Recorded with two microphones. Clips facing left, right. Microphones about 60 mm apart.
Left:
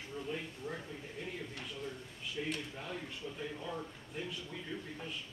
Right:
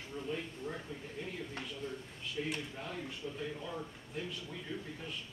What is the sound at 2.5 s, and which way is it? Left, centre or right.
Speech, centre.